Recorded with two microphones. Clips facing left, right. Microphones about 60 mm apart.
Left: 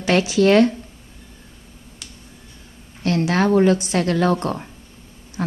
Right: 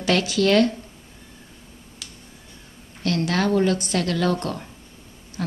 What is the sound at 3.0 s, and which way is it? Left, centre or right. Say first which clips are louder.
Speech: left 4 dB; left.